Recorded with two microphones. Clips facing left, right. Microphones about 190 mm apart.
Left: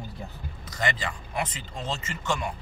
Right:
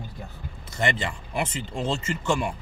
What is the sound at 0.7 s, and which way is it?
Speech, 25° right (ahead or behind).